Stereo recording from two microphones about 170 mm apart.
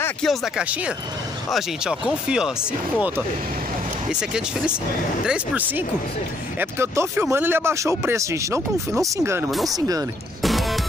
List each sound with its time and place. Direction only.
0.2 s speech: centre (ahead or behind)
4.1 s speech: 5° right (ahead or behind)
9.5 s speech: centre (ahead or behind)
9.8 s speech: 20° right (ahead or behind)
10.4 s music: centre (ahead or behind)